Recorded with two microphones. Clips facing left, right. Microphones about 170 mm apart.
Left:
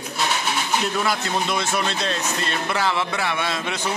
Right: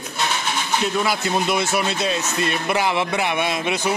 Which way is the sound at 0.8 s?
10° right (ahead or behind).